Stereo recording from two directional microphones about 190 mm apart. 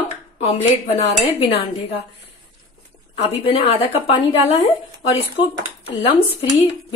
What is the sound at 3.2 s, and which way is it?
A woman's voice, 30° left (ahead or behind).